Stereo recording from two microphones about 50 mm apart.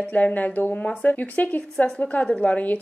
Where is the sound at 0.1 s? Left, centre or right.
Left.